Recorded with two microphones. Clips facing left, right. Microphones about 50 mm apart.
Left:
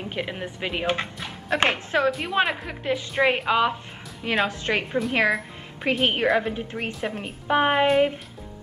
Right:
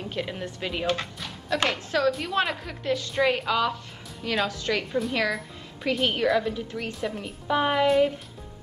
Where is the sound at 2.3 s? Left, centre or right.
Centre; by 5.0 s left.